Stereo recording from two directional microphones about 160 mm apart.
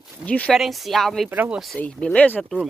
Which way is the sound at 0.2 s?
10° left (ahead or behind).